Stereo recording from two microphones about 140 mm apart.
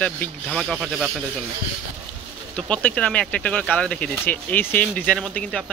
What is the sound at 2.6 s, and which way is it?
Speech, 10° left (ahead or behind).